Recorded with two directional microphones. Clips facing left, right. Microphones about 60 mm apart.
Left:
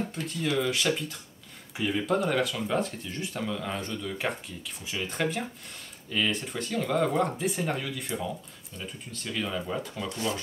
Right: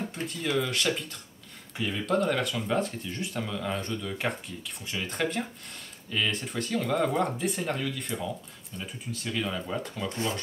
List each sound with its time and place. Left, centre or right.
0.1 s speech: centre
9.1 s speech: centre
10.0 s speech: right